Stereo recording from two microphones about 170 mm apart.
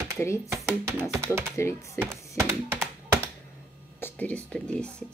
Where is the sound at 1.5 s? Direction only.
15° left (ahead or behind).